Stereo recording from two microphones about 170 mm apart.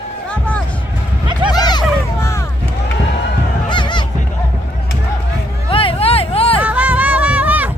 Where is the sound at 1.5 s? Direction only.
25° left (ahead or behind).